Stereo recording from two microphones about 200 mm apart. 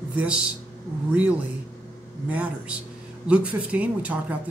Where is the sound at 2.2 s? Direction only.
5° right (ahead or behind).